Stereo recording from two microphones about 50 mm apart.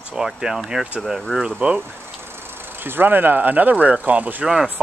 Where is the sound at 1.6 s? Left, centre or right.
Right.